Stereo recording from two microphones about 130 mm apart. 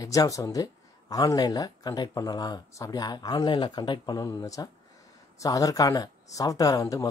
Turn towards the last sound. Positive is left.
turn(degrees=25)  # may be behind; listen again after turning